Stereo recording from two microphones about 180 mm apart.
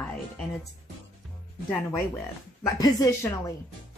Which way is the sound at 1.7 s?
20° left (ahead or behind).